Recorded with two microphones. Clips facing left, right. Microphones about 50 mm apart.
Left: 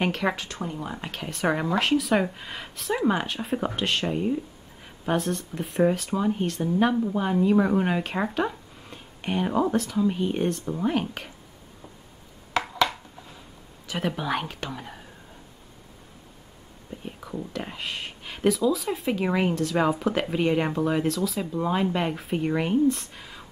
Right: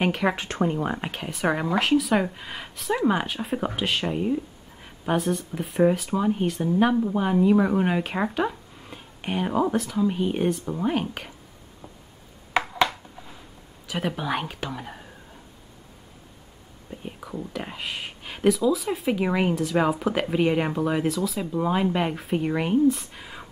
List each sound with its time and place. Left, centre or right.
0.0 s speech: centre
0.4 s speech: right
1.1 s speech: centre
12.6 s a sound: centre
13.8 s speech: centre
17.0 s speech: centre